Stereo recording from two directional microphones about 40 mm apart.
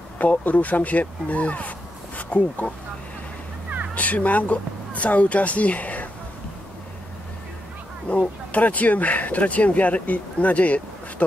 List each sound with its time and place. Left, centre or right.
0.2 s speech: left
3.9 s speech: left
8.1 s speech: left